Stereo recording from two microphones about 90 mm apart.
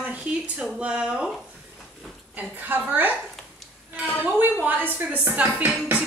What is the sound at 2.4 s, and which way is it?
Speech, 20° right (ahead or behind).